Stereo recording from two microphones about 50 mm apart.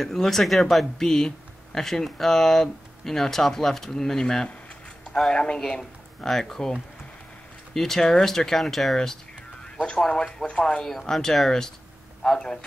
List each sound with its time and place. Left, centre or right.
0.0 s a man's voice: centre